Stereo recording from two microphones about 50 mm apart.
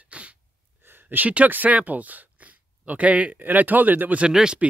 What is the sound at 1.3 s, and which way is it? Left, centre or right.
Speech, right.